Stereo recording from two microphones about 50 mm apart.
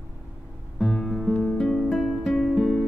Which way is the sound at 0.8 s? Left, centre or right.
Centre.